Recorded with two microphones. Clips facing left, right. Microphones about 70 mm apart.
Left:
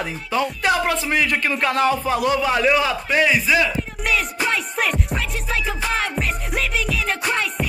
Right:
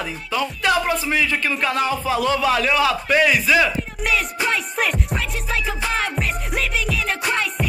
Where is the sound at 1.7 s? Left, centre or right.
Left.